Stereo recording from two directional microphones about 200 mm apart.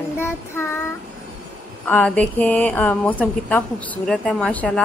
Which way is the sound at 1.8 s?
5° left (ahead or behind).